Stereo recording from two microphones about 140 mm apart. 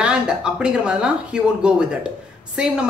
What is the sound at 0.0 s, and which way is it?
Speech, 5° right (ahead or behind).